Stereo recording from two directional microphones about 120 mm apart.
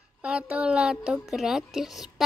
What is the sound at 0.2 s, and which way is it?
Speech, 10° right (ahead or behind).